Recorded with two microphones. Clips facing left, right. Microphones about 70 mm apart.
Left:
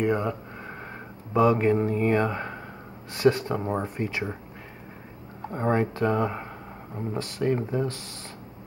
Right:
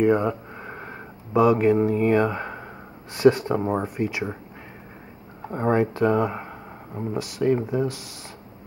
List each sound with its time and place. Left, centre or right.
0.0 s speech: centre
0.6 s a sound: centre
1.3 s speech: centre
1.6 s mantra: centre
2.2 s speech: centre
3.2 s speech: centre
5.5 s speech: centre